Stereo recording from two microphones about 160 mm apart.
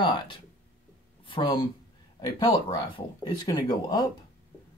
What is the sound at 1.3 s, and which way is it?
Speech, 30° left (ahead or behind).